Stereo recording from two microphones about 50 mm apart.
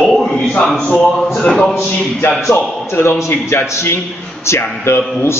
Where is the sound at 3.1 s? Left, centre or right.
Left.